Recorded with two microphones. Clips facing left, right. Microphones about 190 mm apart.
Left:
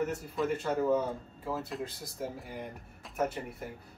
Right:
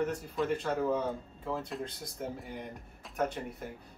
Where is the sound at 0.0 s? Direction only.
5° left (ahead or behind).